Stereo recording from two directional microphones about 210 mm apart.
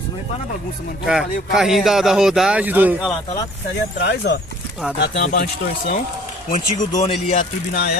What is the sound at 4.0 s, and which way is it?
Speech, 50° left (ahead or behind).